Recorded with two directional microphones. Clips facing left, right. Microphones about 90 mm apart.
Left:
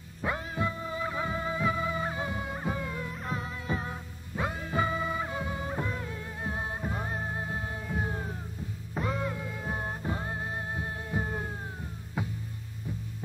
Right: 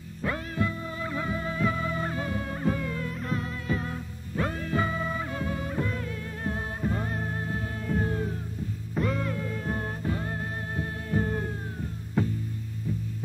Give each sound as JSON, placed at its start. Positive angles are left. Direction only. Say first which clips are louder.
{"t": 0.2, "sound": "music", "louder": "right 2 dB", "side_deg": 20}